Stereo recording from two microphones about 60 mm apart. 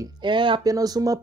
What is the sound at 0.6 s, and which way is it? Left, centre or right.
Speech, right.